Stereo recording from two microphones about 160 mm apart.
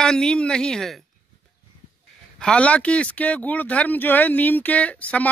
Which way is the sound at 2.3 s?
5° left (ahead or behind).